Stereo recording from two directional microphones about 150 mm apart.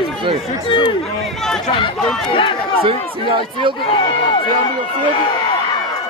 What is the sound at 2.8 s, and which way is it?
Speech, 35° right (ahead or behind).